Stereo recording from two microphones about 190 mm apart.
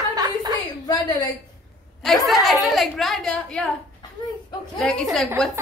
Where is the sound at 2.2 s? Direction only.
Centre (ahead or behind).